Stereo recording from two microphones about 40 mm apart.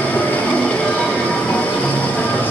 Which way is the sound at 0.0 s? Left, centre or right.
Left.